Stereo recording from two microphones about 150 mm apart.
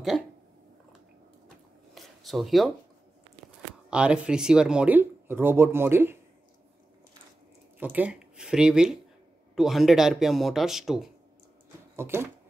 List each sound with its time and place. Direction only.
2.0 s a sound: centre (ahead or behind)
3.9 s speech: 5° right (ahead or behind)
7.8 s speech: 10° right (ahead or behind)
12.0 s speech: 15° right (ahead or behind)